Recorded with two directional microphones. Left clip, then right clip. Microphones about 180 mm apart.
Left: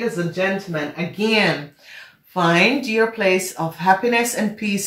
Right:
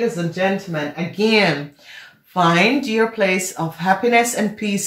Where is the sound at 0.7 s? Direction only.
45° right (ahead or behind).